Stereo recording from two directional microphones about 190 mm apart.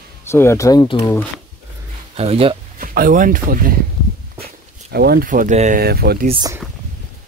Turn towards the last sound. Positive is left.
turn(degrees=-20)  # may be behind; listen again after turning